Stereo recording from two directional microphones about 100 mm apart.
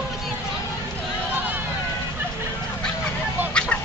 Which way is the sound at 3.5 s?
10° left (ahead or behind).